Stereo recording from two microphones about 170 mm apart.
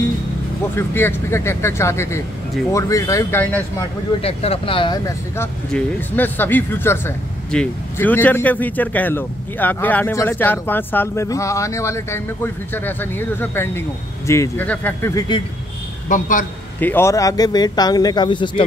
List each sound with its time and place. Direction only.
0.7 s a man's voice: 15° left (ahead or behind)
4.2 s speech: 35° left (ahead or behind)
5.7 s a man's voice: 10° left (ahead or behind)
16.1 s a man's voice: 50° left (ahead or behind)
16.8 s speech: 15° left (ahead or behind)